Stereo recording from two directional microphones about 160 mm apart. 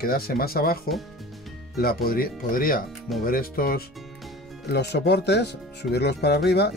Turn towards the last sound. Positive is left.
turn(degrees=90)